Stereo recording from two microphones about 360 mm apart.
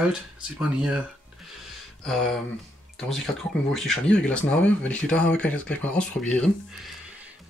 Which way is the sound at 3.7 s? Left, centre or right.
Centre.